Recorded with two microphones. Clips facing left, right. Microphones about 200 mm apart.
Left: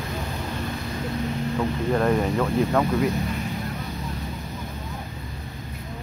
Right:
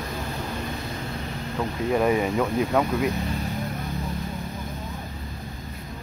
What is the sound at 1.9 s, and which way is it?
Speech, 5° right (ahead or behind).